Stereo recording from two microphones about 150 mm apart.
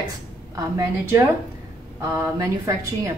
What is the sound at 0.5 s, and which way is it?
A woman's voice, 20° right (ahead or behind).